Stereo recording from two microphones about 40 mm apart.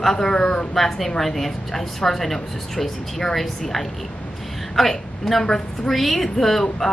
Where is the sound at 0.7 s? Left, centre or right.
Centre.